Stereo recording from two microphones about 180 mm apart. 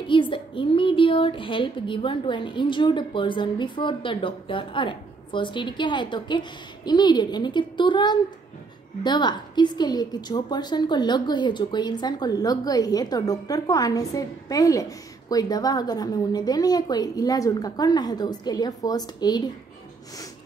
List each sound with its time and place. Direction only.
0.0 s a woman's voice: 30° left (ahead or behind)